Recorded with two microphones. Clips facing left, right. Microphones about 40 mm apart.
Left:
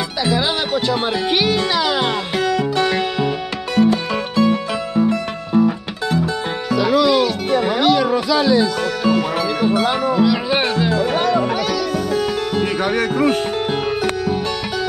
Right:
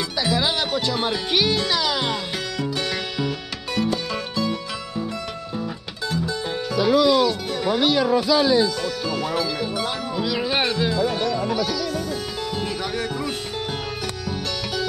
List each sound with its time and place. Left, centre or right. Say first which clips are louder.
0.2 s music: left 3 dB; centre; by 6.3 s left
6.9 s music: left 1 dB; left
9.0 s music: left 8 dB; left
10.2 s music: left 6 dB; centre
10.9 s music: left 5 dB; left